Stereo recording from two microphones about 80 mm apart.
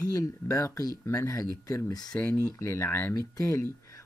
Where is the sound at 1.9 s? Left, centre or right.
Left.